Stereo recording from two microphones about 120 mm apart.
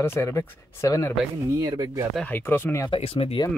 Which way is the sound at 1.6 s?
30° right (ahead or behind).